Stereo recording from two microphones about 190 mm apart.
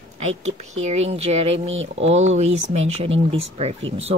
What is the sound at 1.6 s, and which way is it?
Speech, 90° right.